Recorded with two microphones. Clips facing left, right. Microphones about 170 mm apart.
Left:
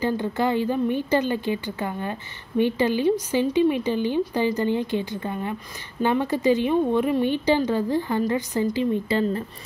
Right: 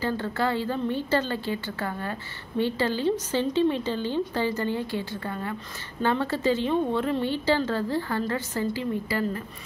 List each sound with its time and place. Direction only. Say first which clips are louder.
0.0 s a woman's voice: left 3 dB; 20° left (ahead or behind)